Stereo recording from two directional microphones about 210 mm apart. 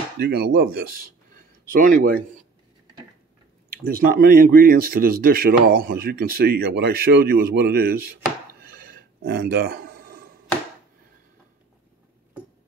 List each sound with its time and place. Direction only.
0.2 s speech: 50° right (ahead or behind)
3.8 s speech: 40° right (ahead or behind)
8.6 s a sound: 45° right (ahead or behind)